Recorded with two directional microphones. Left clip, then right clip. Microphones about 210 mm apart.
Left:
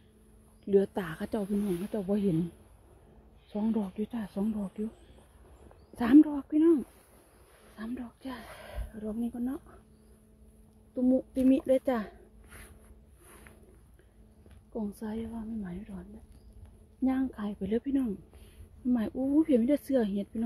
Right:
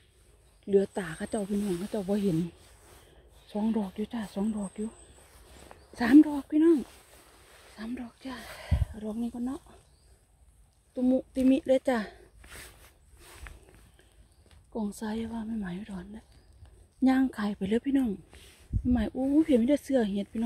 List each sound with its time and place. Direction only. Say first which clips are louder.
0.7 s speech: right 1 dB; centre (ahead or behind)
3.5 s speech: right 1 dB; 5° right (ahead or behind)
5.9 s a woman's voice: right 1 dB; 5° right (ahead or behind)
11.1 s speech: right 1 dB; 5° right (ahead or behind)
12.4 s a sound: right 5 dB; 40° right (ahead or behind)
14.7 s a woman's voice: right 2 dB; 10° right (ahead or behind)